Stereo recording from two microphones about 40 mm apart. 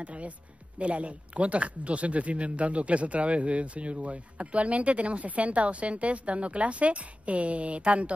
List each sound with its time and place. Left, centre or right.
0.0 s speech: right